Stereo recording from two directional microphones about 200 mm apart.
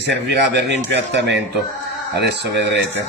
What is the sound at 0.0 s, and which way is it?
Speech, 60° right (ahead or behind).